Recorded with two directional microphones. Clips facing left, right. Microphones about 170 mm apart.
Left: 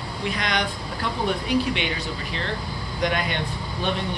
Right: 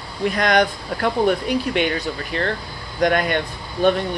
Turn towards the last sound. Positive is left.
turn(degrees=-50)  # may be behind; listen again after turning